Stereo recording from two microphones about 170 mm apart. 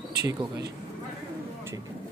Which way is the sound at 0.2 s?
20° right (ahead or behind).